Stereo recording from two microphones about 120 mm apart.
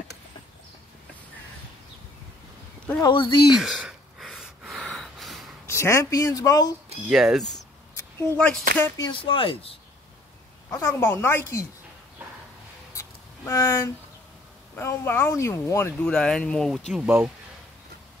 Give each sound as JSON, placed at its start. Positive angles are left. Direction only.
{"t": 3.0, "sound": "speech", "side_deg": 40}
{"t": 3.5, "sound": "gasp", "side_deg": -5}
{"t": 5.7, "sound": "speech", "side_deg": 25}
{"t": 7.1, "sound": "speech", "side_deg": -5}
{"t": 7.9, "sound": "a sound", "side_deg": 20}
{"t": 8.5, "sound": "speech", "side_deg": 15}
{"t": 9.1, "sound": "speech", "side_deg": 45}
{"t": 10.7, "sound": "speech", "side_deg": 25}
{"t": 13.5, "sound": "speech", "side_deg": 25}
{"t": 16.0, "sound": "speech", "side_deg": 5}